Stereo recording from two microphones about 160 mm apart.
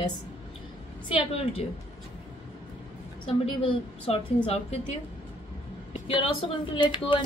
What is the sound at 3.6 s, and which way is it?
Speech, 40° left (ahead or behind).